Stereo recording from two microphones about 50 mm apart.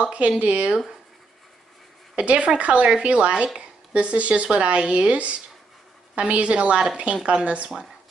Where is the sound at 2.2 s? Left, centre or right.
Right.